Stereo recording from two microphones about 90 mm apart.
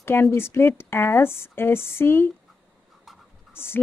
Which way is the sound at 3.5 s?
25° left (ahead or behind).